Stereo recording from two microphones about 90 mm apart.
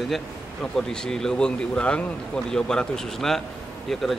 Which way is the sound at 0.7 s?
5° left (ahead or behind).